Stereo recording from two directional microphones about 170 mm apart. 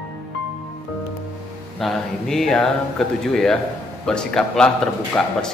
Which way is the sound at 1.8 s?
Centre (ahead or behind).